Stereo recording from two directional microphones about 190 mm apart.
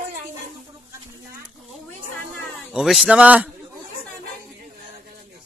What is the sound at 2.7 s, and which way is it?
Speech, 5° right (ahead or behind).